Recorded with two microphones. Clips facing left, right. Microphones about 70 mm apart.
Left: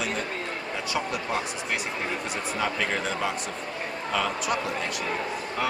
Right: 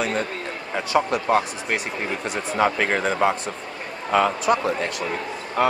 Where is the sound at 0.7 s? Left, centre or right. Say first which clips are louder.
Right 10 dB; right.